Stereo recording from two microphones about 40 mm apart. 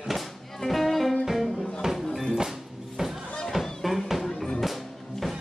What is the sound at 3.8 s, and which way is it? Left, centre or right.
Music, centre.